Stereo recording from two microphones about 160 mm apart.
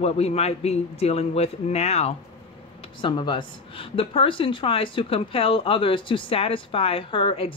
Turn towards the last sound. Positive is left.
turn(degrees=35)  # may be behind; listen again after turning